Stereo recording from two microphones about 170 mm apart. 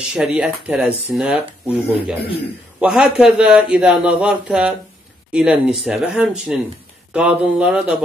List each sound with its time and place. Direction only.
0.1 s speech: 5° right (ahead or behind)